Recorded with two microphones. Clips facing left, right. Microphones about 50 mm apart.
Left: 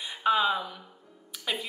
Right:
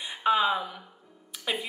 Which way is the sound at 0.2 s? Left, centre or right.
Centre.